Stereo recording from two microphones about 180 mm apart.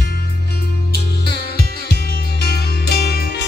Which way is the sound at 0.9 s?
65° left (ahead or behind).